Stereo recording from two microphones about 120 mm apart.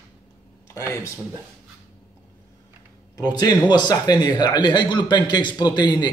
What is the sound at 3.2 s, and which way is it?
Speech, 35° left (ahead or behind).